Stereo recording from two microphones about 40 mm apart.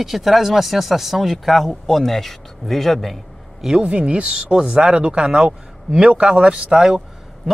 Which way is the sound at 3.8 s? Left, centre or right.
Right.